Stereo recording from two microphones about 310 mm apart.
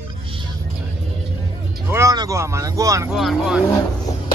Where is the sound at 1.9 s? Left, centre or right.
Centre.